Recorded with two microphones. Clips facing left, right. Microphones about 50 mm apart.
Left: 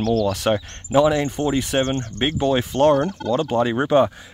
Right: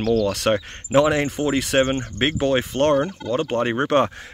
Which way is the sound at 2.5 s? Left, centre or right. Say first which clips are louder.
Left 3 dB; right.